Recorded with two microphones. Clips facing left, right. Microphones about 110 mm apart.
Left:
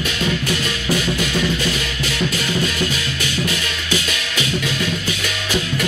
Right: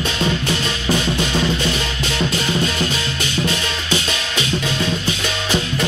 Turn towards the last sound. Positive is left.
turn(degrees=-30)  # may be behind; listen again after turning